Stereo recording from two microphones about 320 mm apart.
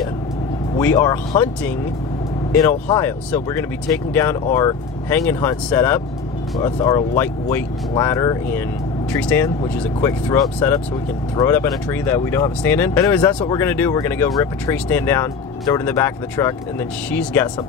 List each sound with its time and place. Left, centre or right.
0.7 s speech: centre
2.9 s speech: centre